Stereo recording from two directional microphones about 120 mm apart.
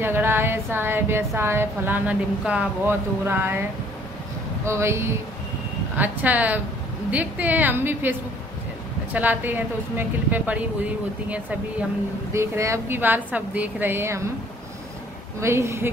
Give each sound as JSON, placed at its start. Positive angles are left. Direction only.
{"t": 0.0, "sound": "a woman's voice", "side_deg": -15}
{"t": 4.6, "sound": "a woman's voice", "side_deg": -20}
{"t": 12.3, "sound": "a woman's voice", "side_deg": -25}
{"t": 15.4, "sound": "a woman's voice", "side_deg": -25}